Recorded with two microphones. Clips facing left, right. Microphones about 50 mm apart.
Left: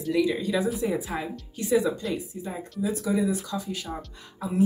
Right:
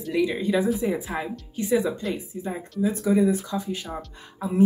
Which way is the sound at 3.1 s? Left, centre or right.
Right.